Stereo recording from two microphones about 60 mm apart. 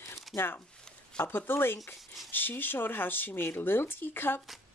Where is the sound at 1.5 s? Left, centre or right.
Left.